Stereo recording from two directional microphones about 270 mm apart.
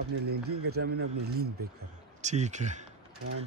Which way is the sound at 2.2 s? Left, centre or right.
Right.